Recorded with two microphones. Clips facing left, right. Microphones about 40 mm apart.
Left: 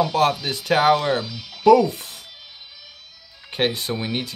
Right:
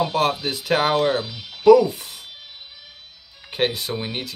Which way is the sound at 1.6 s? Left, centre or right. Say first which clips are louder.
Right 1 dB; centre.